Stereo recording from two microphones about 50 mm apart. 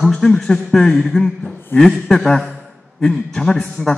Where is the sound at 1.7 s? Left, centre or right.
Left.